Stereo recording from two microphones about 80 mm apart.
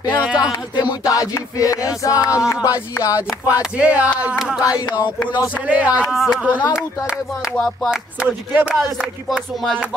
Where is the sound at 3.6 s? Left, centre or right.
Centre.